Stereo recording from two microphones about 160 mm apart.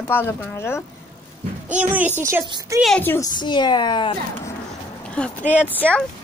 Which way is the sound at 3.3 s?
30° left (ahead or behind).